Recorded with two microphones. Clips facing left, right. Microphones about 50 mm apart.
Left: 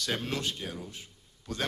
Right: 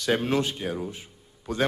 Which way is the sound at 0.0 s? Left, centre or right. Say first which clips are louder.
Right 8 dB; centre.